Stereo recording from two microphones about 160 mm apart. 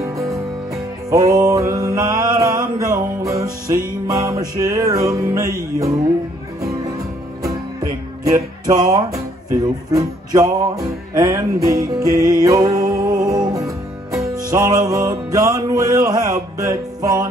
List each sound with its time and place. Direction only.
0.0 s music: 20° right (ahead or behind)
1.1 s mantra: 20° right (ahead or behind)
8.3 s music: 20° right (ahead or behind)